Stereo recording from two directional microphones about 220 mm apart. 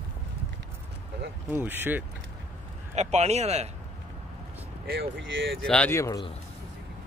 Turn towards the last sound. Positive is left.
turn(degrees=15)  # may be behind; listen again after turning